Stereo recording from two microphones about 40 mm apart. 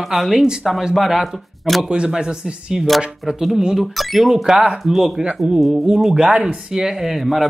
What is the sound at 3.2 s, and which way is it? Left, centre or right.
Speech, centre.